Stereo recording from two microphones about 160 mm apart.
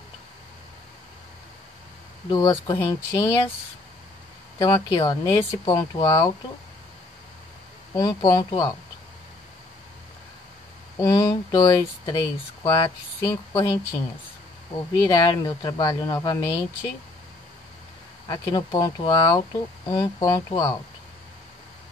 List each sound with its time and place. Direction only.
2.2 s speech: 25° left (ahead or behind)
4.9 s speech: 25° left (ahead or behind)
7.9 s speech: 25° left (ahead or behind)
11.0 s speech: 20° left (ahead or behind)
18.3 s speech: 25° left (ahead or behind)